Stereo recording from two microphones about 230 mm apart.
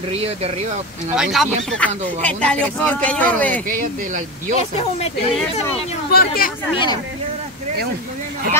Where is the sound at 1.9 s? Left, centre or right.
Right.